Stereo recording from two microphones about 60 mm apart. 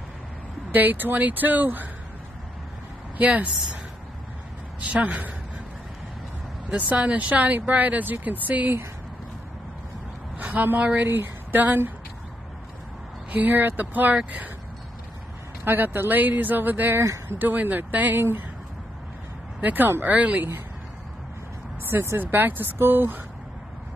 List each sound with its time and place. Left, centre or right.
0.7 s speech: right
3.2 s speech: right
4.9 s speech: right
6.7 s speech: right
10.4 s a woman's voice: right
13.3 s speech: right
15.6 s speech: right
19.6 s speech: right
21.8 s speech: right